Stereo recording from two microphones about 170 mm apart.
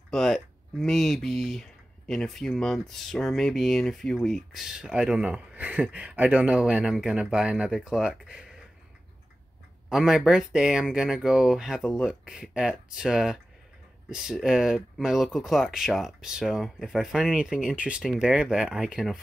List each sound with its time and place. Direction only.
0.1 s speech: centre (ahead or behind)
9.8 s speech: 5° right (ahead or behind)